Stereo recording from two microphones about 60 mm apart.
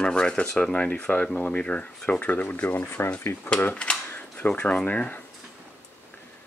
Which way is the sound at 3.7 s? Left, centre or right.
Centre.